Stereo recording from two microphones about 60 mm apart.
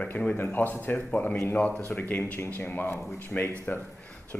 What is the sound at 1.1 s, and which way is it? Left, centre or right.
Speech, left.